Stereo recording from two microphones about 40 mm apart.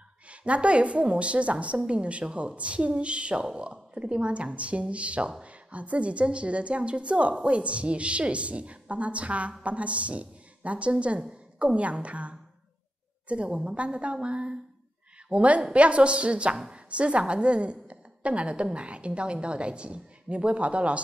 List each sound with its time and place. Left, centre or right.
0.3 s a woman's voice: right